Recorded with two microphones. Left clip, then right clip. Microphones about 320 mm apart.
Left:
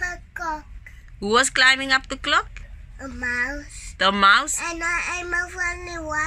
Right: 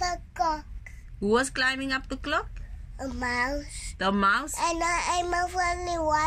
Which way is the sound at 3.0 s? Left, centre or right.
Centre.